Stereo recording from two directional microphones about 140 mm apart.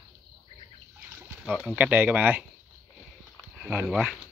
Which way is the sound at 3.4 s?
10° right (ahead or behind).